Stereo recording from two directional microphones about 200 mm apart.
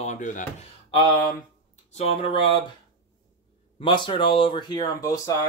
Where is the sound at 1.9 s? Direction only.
30° left (ahead or behind).